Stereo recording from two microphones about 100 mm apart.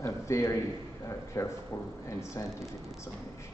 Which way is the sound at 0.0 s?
30° left (ahead or behind).